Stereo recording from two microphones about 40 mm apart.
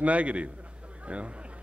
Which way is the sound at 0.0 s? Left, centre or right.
Right.